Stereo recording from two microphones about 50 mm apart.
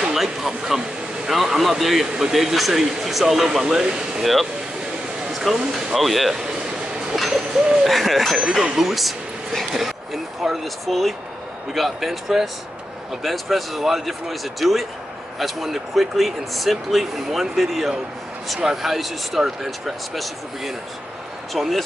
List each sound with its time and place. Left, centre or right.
0.0 s speech: centre
1.3 s speech: centre
4.2 s speech: centre
8.4 s speech: centre
8.7 s speech: centre
21.5 s speech: centre